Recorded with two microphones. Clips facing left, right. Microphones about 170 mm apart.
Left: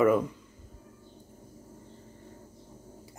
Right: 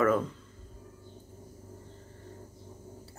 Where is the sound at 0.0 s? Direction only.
15° left (ahead or behind).